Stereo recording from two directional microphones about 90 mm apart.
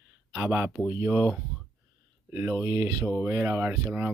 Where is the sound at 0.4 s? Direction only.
15° right (ahead or behind).